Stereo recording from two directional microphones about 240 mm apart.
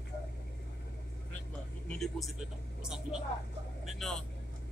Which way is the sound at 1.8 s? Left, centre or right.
Centre.